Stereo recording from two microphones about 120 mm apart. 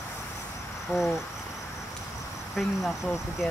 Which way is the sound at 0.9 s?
5° left (ahead or behind).